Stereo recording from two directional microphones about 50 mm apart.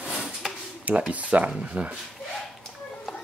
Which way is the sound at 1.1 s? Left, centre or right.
Right.